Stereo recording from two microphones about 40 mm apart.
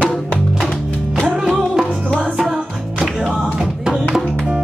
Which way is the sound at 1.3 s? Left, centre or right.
Centre.